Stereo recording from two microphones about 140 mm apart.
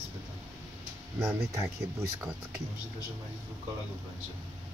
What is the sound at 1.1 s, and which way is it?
Speech, 20° right (ahead or behind).